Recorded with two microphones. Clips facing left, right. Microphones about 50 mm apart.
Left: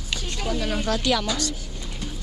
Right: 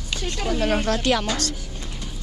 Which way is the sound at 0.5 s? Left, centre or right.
Right.